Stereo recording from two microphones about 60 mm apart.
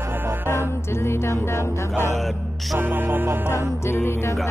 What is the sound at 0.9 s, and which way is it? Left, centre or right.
Music, left.